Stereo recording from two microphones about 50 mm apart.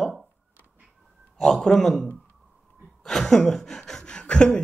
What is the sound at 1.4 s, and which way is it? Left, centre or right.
Speech, centre.